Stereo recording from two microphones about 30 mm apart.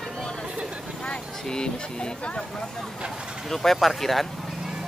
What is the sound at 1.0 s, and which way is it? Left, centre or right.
Speech, left.